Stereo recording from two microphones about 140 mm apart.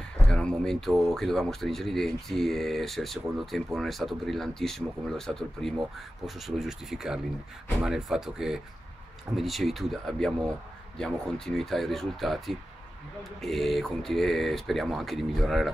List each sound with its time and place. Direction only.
0.3 s speech: 5° left (ahead or behind)